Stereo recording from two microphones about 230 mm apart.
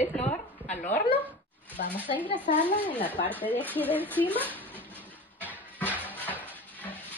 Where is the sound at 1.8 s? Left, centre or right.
Left.